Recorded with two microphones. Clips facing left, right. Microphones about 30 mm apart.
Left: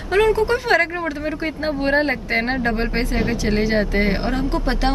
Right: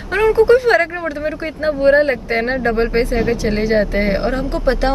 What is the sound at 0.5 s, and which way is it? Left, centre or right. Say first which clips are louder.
Speech: right 6 dB; centre.